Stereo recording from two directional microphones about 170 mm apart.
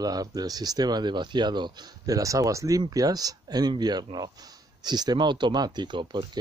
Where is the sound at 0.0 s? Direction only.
20° right (ahead or behind).